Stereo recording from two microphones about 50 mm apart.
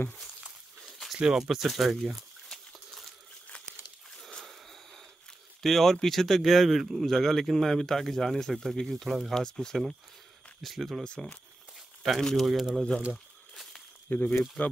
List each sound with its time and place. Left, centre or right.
0.8 s a sound: centre
1.1 s speech: centre
2.5 s a sound: centre
5.6 s speech: centre
12.4 s speech: centre
14.1 s speech: left